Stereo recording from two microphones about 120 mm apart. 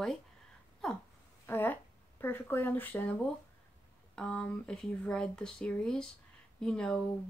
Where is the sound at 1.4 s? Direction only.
15° left (ahead or behind).